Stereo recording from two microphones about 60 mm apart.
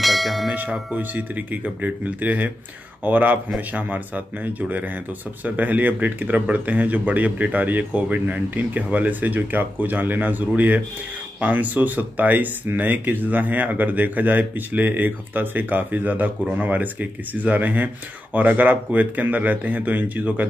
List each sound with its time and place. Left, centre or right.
0.0 s bell: centre
0.6 s speech: right